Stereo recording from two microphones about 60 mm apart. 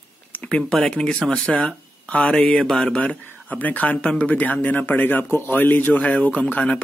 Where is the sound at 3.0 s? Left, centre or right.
Left.